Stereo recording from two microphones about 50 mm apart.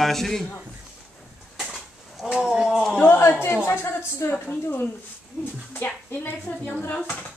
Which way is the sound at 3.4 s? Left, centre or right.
Left.